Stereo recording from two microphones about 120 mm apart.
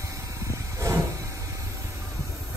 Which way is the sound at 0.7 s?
25° right (ahead or behind).